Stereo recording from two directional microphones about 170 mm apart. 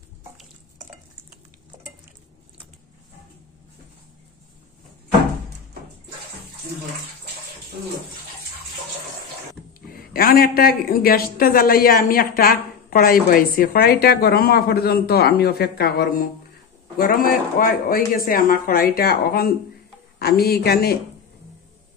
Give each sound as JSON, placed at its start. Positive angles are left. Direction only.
{"t": 9.8, "sound": "a man's voice", "side_deg": 60}